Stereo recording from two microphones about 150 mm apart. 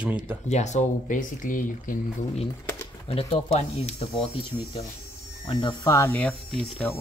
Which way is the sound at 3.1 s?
40° left (ahead or behind).